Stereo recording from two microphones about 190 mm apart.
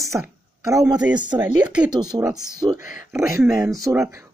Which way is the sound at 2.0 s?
20° right (ahead or behind).